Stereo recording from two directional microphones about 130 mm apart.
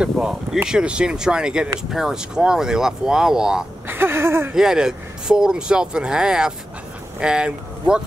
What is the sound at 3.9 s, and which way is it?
Speech, 15° right (ahead or behind).